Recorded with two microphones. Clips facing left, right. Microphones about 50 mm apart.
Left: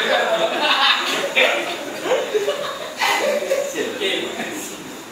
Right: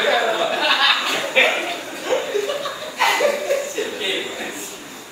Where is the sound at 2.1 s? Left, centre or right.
Left.